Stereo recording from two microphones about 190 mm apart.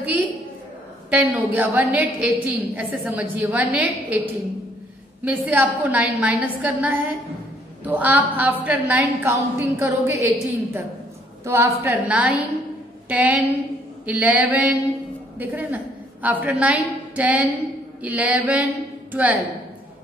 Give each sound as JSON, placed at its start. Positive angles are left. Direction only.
{"t": 0.0, "sound": "a sound", "side_deg": -10}
{"t": 1.1, "sound": "a woman's voice", "side_deg": -10}
{"t": 5.2, "sound": "a woman's voice", "side_deg": -10}